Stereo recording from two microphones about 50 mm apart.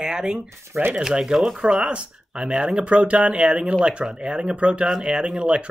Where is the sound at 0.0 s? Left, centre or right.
Centre.